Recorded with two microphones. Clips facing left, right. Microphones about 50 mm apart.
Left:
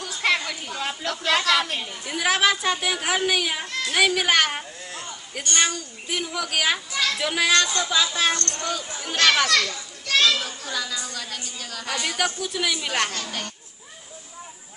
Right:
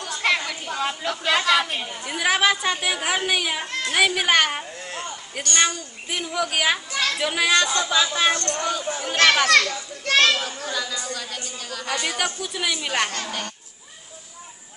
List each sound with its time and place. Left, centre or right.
0.0 s a sound: centre
0.5 s a woman's voice: centre
3.6 s a child's voice: right
3.9 s a woman's voice: centre
9.5 s children playing: right
10.7 s a woman's voice: centre